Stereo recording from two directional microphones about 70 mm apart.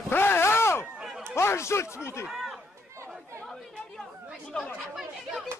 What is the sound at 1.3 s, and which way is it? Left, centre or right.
Speech, left.